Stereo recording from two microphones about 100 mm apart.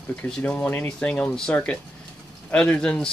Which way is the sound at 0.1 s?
15° left (ahead or behind).